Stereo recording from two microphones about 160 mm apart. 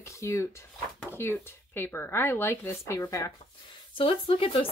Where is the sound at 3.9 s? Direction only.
35° left (ahead or behind).